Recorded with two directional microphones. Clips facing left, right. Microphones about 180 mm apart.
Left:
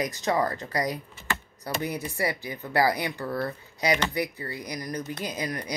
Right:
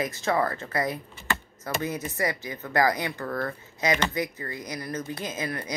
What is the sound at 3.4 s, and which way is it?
Speech, 35° left (ahead or behind).